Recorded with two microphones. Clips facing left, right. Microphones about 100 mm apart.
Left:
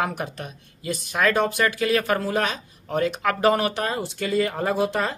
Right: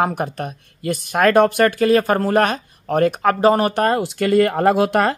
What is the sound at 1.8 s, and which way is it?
Speech, 40° right (ahead or behind).